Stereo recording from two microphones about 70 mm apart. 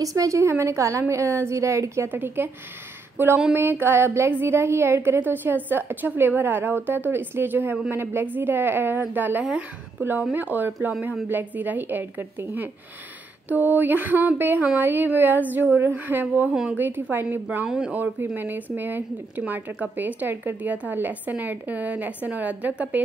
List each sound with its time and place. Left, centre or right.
0.0 s a woman's voice: right
2.0 s a woman's voice: right
9.4 s speech: centre
9.9 s speech: right
17.6 s speech: centre
17.9 s speech: right